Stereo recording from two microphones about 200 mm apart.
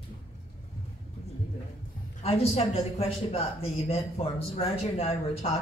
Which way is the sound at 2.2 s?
30° left (ahead or behind).